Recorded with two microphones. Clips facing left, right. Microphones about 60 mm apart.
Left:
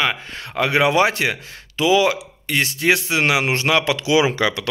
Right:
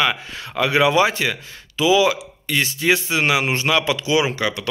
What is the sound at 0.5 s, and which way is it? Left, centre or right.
Speech, left.